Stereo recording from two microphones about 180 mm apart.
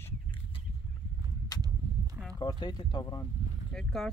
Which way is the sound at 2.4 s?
25° left (ahead or behind).